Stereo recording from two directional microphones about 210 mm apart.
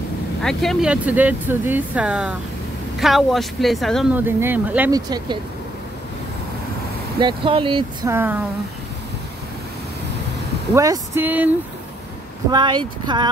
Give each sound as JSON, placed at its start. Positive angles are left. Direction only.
{"t": 0.4, "sound": "speech", "side_deg": 0}
{"t": 7.2, "sound": "speech", "side_deg": -25}
{"t": 8.1, "sound": "speech", "side_deg": -10}
{"t": 10.7, "sound": "speech", "side_deg": -15}
{"t": 12.4, "sound": "speech", "side_deg": -20}